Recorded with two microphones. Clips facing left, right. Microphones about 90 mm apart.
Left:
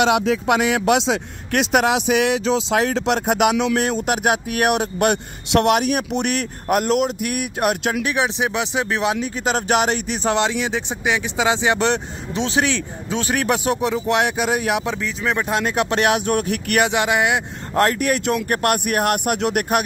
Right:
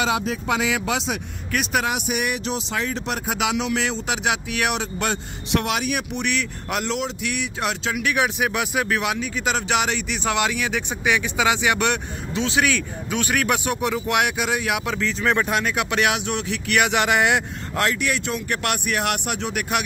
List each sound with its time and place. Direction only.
0.0 s speech: 80° left
3.7 s speech: 50° left (ahead or behind)
8.0 s speech: 30° left (ahead or behind)
14.9 s speech: 15° left (ahead or behind)
15.6 s speech: 35° left (ahead or behind); by 16.8 s 50° left (ahead or behind)
16.8 s speech: 20° left (ahead or behind)
17.7 s speech: 45° left (ahead or behind)